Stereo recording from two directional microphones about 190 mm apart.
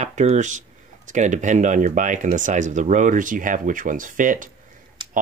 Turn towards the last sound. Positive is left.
turn(degrees=-45)  # may be behind; listen again after turning